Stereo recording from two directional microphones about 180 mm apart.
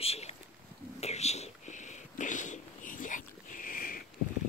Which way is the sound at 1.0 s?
35° left (ahead or behind).